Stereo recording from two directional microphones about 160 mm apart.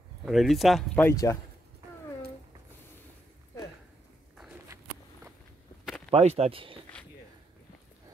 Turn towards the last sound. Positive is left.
turn(degrees=-35)  # may be behind; listen again after turning